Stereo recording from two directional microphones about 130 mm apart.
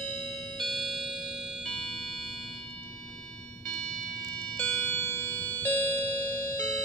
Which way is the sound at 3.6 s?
5° left (ahead or behind).